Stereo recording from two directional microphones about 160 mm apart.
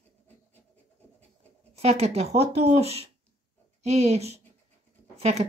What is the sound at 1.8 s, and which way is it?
Speech, 40° right (ahead or behind).